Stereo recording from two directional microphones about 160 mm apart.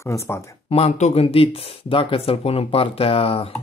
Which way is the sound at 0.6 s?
40° left (ahead or behind).